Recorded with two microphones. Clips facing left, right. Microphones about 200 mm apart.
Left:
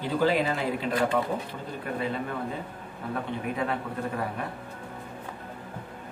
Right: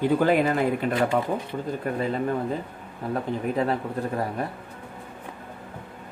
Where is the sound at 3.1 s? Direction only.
35° right (ahead or behind).